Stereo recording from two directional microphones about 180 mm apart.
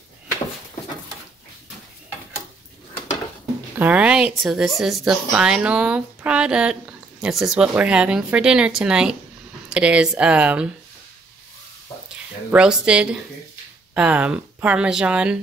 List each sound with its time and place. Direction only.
3.7 s speech: 10° right (ahead or behind)
11.9 s a sound: 20° left (ahead or behind)
12.4 s speech: 5° right (ahead or behind)